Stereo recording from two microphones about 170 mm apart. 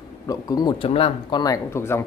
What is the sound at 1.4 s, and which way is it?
Speech, 15° left (ahead or behind).